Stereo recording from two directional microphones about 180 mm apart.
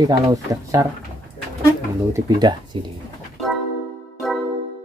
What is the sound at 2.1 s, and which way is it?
Speech, 20° right (ahead or behind).